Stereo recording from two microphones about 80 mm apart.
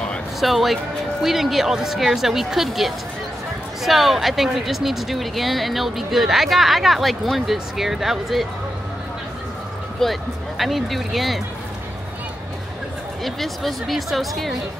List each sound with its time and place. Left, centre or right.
0.4 s speech: centre
10.0 s speech: centre
13.2 s speech: centre